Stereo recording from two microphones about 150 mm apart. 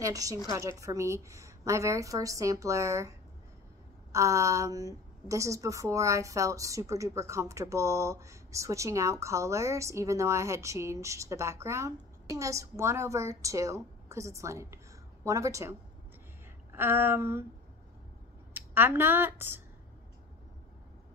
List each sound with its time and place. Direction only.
0.0 s a woman's voice: 20° right (ahead or behind)
4.1 s a woman's voice: 20° right (ahead or behind)
16.7 s a sound: 15° right (ahead or behind)
18.5 s speech: 15° right (ahead or behind)